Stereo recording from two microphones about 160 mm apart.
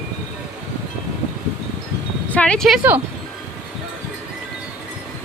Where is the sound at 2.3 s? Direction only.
10° left (ahead or behind).